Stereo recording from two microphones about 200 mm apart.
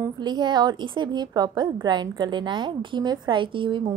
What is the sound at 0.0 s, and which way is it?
A woman's voice, 20° right (ahead or behind).